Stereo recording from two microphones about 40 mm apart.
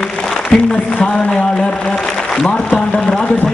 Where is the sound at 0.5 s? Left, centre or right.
Left.